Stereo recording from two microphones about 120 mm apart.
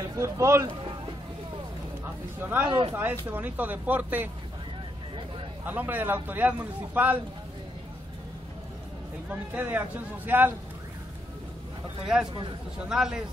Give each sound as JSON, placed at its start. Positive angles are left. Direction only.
{"t": 0.1, "sound": "speech", "side_deg": -25}
{"t": 2.4, "sound": "a man's voice", "side_deg": -15}
{"t": 5.7, "sound": "a man's voice", "side_deg": -15}
{"t": 9.3, "sound": "a man's voice", "side_deg": -15}
{"t": 12.0, "sound": "a man's voice", "side_deg": -5}